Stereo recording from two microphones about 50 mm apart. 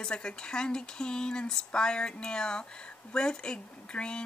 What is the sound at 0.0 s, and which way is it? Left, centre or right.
Speech, centre.